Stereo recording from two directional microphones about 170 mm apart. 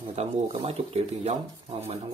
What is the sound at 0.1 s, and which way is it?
Speech, 35° right (ahead or behind).